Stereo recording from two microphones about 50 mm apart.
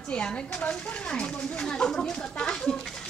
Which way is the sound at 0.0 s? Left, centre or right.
Centre.